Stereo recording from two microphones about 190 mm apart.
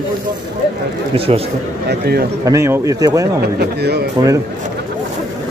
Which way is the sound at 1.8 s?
55° right (ahead or behind).